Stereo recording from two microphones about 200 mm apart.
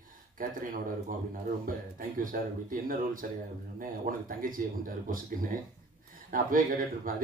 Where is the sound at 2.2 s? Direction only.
45° right (ahead or behind).